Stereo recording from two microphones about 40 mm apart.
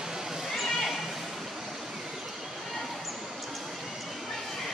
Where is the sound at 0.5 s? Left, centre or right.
Centre.